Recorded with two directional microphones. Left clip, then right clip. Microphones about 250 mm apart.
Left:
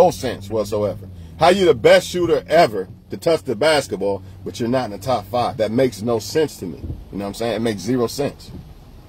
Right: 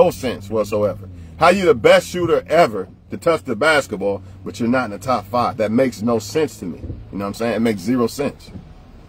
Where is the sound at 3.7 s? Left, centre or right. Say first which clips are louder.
Right 1 dB; centre.